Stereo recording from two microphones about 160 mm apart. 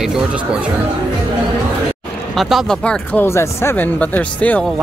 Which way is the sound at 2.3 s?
Centre (ahead or behind).